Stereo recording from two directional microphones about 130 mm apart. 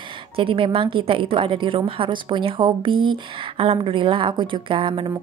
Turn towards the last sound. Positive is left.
turn(degrees=-40)  # may be behind; listen again after turning